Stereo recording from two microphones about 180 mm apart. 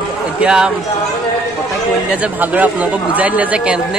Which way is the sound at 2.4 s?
10° right (ahead or behind).